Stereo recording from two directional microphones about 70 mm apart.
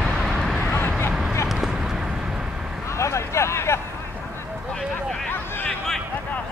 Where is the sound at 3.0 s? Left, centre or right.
Left.